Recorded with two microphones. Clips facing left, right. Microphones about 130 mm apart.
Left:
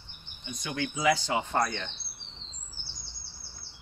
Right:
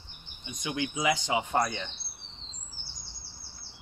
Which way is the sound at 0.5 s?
15° right (ahead or behind).